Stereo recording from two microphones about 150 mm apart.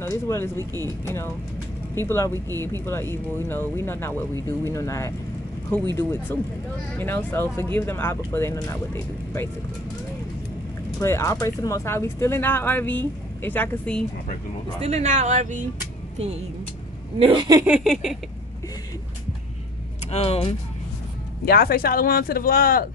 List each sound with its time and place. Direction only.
0.0 s speech: 15° left (ahead or behind)
0.6 s speech: 25° right (ahead or behind)
1.0 s speech: 15° left (ahead or behind)
7.0 s speech: 15° left (ahead or behind)
11.0 s speech: 20° left (ahead or behind)
14.8 s speech: 45° right (ahead or behind)
17.2 s speech: 35° right (ahead or behind)
17.6 s a sound: 5° right (ahead or behind)
20.1 s speech: 40° left (ahead or behind)
21.5 s speech: 85° left